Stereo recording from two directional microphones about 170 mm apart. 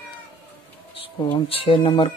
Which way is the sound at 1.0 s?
30° left (ahead or behind).